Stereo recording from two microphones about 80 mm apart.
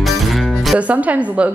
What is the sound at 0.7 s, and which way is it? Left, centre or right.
Speech, centre.